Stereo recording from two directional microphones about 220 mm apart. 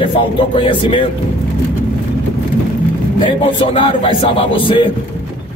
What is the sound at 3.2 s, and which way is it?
Speech, 25° left (ahead or behind).